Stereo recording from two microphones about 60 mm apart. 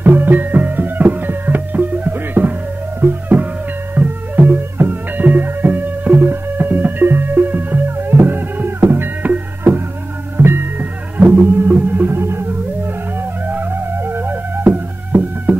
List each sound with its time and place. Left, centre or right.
0.0 s music: right
10.3 s music: right